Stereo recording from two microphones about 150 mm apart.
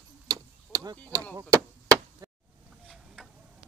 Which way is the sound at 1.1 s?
20° right (ahead or behind).